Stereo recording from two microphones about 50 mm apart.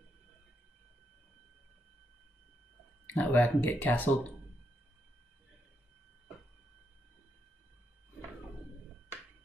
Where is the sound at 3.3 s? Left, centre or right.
Left.